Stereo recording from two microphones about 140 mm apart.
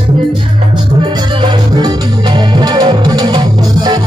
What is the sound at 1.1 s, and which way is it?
Music, 30° right (ahead or behind).